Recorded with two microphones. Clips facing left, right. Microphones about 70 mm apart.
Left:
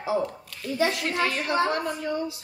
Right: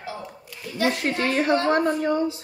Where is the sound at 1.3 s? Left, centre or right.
Right.